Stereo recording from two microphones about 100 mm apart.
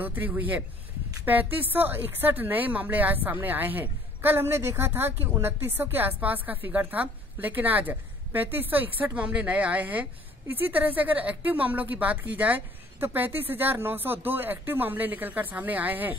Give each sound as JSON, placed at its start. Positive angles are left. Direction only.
{"t": 0.0, "sound": "a woman's voice", "side_deg": -20}